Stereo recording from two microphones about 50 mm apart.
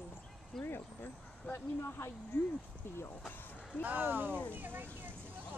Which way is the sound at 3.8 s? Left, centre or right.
Right.